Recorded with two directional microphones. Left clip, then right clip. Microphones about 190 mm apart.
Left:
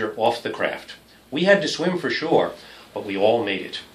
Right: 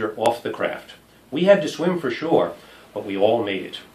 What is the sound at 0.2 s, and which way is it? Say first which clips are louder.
Speech: even; centre (ahead or behind).